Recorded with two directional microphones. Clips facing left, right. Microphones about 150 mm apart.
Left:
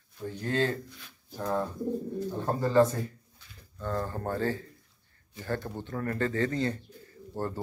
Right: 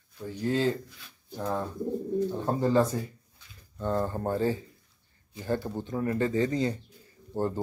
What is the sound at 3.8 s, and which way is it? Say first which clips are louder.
Speech: right 4 dB; 20° right (ahead or behind).